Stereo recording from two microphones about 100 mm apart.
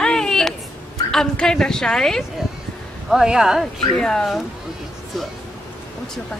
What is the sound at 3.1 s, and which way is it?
Speech, 5° right (ahead or behind).